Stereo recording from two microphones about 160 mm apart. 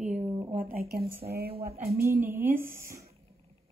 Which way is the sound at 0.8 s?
70° right (ahead or behind).